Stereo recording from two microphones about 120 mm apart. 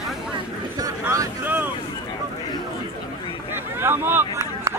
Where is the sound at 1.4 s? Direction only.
15° right (ahead or behind).